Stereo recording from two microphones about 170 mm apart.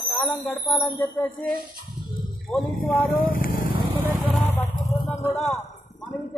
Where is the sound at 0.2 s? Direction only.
10° left (ahead or behind).